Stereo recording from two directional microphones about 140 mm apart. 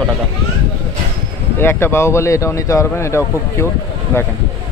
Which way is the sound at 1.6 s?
15° left (ahead or behind).